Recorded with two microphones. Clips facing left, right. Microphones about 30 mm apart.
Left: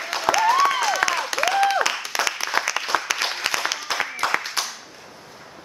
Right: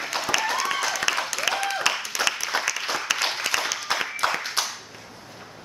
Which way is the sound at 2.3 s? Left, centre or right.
Left.